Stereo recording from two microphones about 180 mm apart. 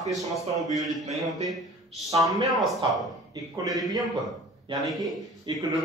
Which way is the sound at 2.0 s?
20° right (ahead or behind).